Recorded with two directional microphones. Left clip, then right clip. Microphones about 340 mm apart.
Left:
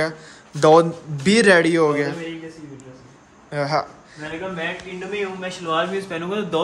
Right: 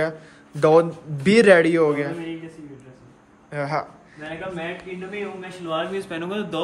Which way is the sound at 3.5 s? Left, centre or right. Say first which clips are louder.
Left 4 dB; centre.